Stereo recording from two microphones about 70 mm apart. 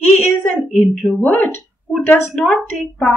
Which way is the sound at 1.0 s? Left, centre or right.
Left.